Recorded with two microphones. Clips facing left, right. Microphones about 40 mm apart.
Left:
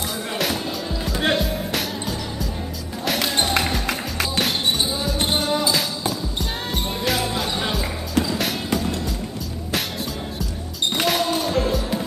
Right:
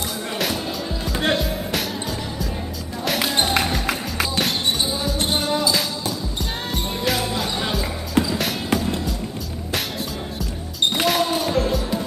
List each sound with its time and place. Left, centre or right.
0.4 s music: centre
3.1 s music: centre
6.7 s music: centre
11.0 s music: centre